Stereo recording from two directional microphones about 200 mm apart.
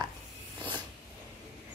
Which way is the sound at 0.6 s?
20° right (ahead or behind).